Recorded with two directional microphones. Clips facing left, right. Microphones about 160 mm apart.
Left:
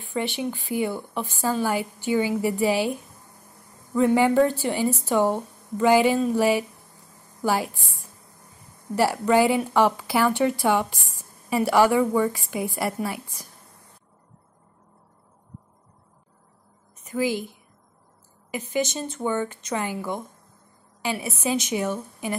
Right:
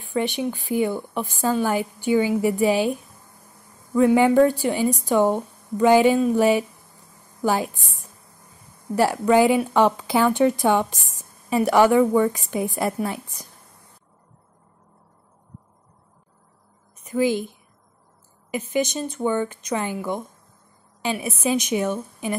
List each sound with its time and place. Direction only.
0.1 s a woman's voice: 15° right (ahead or behind)
3.9 s a woman's voice: 15° right (ahead or behind)
9.1 s a woman's voice: 15° right (ahead or behind)
17.1 s a woman's voice: 20° right (ahead or behind)
18.5 s a woman's voice: 20° right (ahead or behind)
21.0 s a woman's voice: 20° right (ahead or behind)